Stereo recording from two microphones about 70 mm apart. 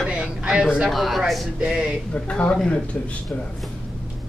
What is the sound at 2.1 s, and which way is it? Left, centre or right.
Speech, centre.